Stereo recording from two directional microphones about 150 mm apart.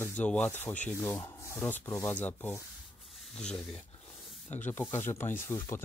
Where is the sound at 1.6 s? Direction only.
10° left (ahead or behind).